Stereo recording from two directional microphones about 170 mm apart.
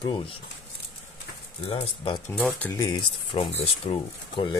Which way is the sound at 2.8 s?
25° left (ahead or behind).